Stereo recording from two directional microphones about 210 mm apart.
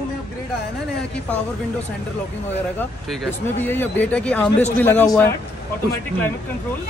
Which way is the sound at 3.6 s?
10° left (ahead or behind).